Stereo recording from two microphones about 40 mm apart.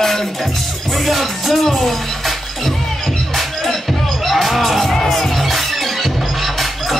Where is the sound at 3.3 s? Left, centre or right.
Centre.